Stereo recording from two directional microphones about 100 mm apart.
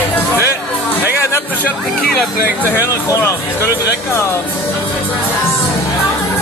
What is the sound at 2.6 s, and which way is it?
A man's voice, 25° left (ahead or behind).